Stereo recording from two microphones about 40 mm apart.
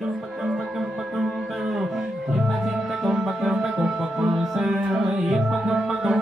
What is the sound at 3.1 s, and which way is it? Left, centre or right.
Music, centre.